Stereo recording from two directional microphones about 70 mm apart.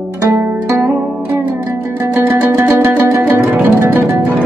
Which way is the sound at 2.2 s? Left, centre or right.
Right.